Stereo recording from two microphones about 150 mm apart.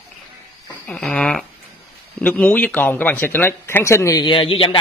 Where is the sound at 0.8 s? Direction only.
5° left (ahead or behind); by 4.7 s 35° left (ahead or behind).